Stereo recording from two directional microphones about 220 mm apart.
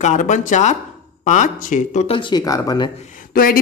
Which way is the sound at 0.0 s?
35° left (ahead or behind).